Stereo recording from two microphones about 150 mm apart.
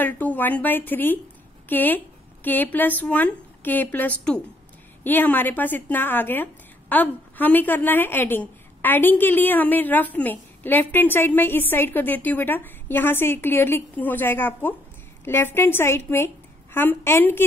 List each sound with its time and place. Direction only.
0.0 s a woman's voice: 10° left (ahead or behind)